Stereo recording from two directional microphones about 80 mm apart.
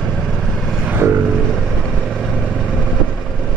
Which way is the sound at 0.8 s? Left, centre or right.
Right.